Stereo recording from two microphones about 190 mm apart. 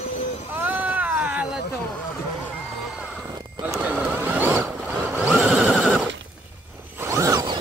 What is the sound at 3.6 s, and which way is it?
Horse, 5° right (ahead or behind).